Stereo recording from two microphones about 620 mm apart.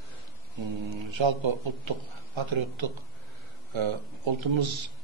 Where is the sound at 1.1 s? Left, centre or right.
Right.